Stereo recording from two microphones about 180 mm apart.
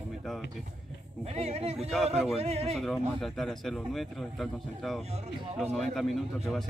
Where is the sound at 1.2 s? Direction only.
35° right (ahead or behind).